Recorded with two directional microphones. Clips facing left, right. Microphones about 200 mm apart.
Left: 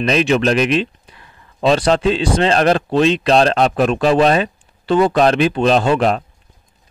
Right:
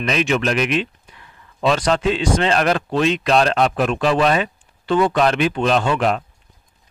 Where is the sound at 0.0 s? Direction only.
35° left (ahead or behind).